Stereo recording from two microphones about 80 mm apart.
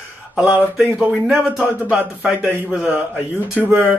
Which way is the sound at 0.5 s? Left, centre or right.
Centre.